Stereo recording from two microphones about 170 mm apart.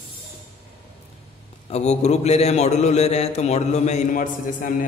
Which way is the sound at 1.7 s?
40° left (ahead or behind).